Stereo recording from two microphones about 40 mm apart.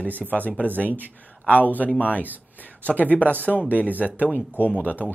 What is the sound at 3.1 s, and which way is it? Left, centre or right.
Speech, left.